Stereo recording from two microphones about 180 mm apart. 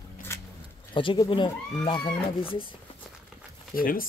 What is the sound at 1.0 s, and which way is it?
Speech, 30° left (ahead or behind).